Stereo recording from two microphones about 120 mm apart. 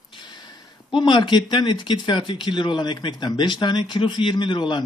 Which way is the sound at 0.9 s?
40° left (ahead or behind).